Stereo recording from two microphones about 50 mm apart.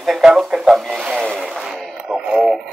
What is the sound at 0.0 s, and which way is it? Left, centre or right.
Speech, centre.